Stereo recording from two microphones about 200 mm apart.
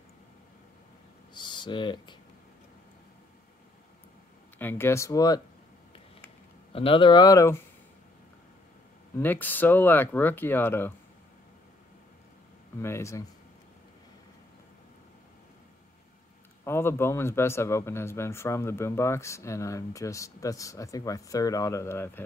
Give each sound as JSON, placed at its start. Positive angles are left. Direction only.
{"t": 1.3, "sound": "a sound", "side_deg": 20}
{"t": 4.6, "sound": "speech", "side_deg": 10}
{"t": 6.7, "sound": "speech", "side_deg": 25}
{"t": 9.2, "sound": "speech", "side_deg": 10}
{"t": 12.8, "sound": "speech", "side_deg": 15}
{"t": 16.6, "sound": "speech", "side_deg": 10}